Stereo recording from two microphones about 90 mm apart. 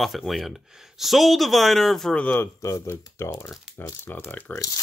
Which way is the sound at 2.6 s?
30° left (ahead or behind).